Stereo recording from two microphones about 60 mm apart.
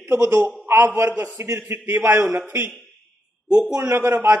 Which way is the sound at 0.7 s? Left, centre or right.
Right.